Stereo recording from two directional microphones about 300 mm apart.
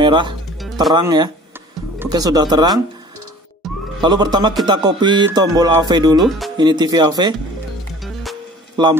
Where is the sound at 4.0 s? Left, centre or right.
Centre.